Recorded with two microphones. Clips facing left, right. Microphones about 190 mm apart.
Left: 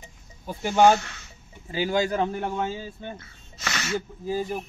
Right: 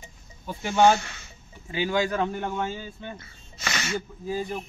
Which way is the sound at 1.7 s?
40° left (ahead or behind).